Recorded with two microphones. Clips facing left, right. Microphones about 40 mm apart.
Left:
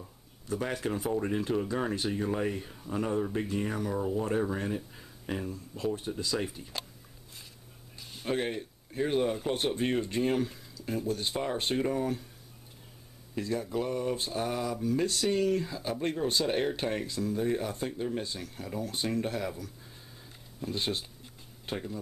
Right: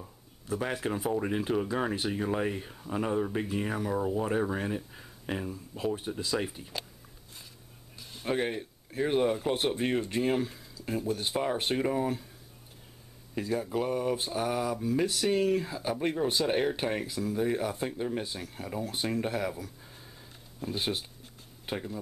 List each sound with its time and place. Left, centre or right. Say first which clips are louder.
0.0 s speech: right 1 dB; centre
8.2 s speech: right 1 dB; centre
13.3 s speech: right 1 dB; centre